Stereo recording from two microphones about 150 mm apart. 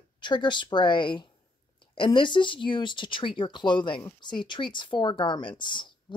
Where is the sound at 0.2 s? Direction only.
30° left (ahead or behind).